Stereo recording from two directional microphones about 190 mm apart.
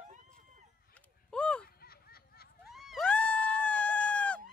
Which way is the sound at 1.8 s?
55° left (ahead or behind).